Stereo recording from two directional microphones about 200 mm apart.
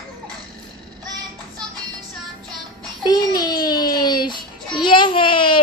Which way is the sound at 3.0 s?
20° left (ahead or behind).